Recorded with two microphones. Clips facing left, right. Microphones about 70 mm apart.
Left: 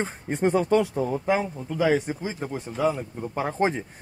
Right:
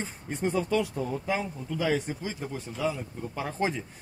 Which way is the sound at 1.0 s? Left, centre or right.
Left.